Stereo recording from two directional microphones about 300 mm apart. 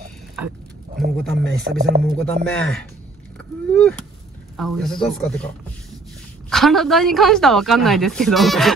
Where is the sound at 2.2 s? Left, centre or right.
Centre.